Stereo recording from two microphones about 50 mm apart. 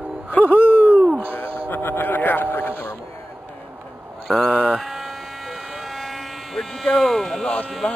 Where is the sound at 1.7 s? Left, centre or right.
Left.